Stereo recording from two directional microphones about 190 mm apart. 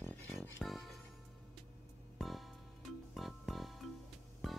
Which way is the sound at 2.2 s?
Centre (ahead or behind).